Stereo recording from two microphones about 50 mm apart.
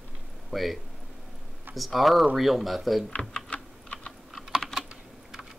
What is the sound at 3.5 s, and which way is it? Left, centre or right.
Typing, left.